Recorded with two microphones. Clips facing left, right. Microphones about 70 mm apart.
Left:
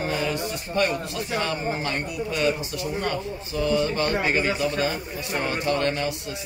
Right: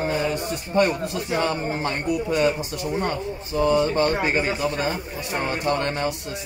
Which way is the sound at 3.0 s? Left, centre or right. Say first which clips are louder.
Right 1 dB; right.